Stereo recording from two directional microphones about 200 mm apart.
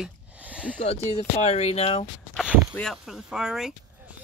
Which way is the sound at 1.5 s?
30° left (ahead or behind).